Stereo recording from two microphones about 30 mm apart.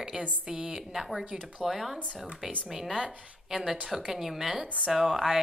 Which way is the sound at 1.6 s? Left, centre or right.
Centre.